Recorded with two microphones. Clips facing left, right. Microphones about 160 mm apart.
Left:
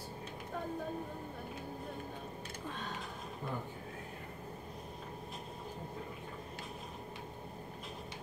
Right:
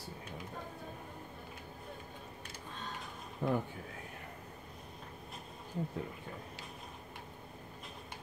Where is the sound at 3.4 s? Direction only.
70° right (ahead or behind).